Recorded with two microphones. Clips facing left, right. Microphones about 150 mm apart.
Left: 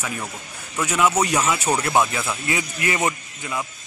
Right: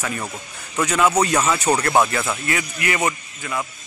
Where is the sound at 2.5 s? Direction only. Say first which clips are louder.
Left 2 dB; 20° left (ahead or behind).